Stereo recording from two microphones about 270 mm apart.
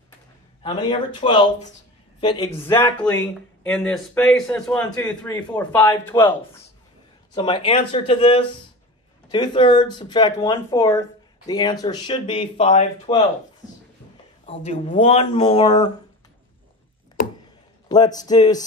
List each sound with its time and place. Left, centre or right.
0.6 s speech: centre
14.4 s speech: left
17.8 s speech: centre